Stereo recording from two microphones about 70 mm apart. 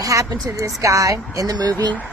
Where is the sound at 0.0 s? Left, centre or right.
Right.